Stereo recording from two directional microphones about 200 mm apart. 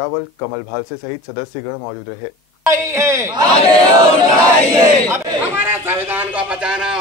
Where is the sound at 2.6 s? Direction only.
15° right (ahead or behind).